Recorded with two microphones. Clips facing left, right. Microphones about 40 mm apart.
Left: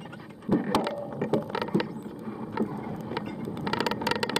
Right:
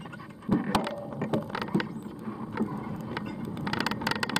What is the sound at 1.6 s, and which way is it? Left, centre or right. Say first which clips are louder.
Vehicle: left 2 dB; left.